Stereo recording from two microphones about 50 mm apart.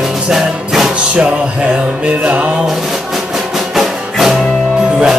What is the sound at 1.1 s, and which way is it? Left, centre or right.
Music, right.